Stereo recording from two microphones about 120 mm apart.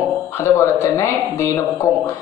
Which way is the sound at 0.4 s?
25° left (ahead or behind).